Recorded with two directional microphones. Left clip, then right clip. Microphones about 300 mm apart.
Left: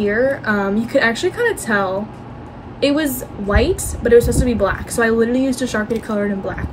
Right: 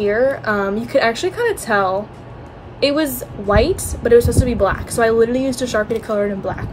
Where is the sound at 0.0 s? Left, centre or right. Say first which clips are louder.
Right 1 dB; centre.